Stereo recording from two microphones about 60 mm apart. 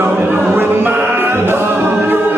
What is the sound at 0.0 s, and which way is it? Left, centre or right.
Music, right.